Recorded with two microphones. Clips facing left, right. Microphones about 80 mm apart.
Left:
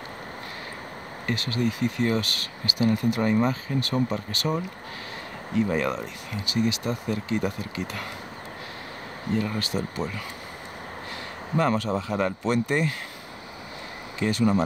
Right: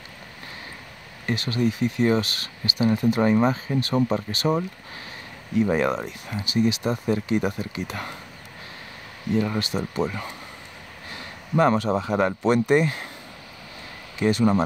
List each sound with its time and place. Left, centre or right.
1.3 s speech: right
5.7 s speech: right
9.4 s speech: right
11.5 s speech: right
14.2 s speech: right